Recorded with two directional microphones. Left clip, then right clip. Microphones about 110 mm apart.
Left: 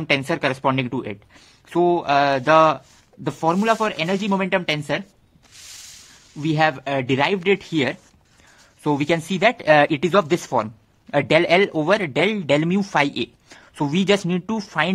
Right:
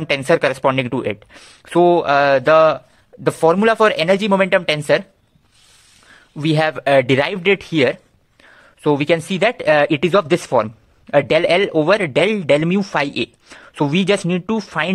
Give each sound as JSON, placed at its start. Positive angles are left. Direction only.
{"t": 0.0, "sound": "speech", "side_deg": -25}
{"t": 2.5, "sound": "speech", "side_deg": -5}
{"t": 3.3, "sound": "speech", "side_deg": -35}
{"t": 6.3, "sound": "speech", "side_deg": -35}
{"t": 8.8, "sound": "speech", "side_deg": -10}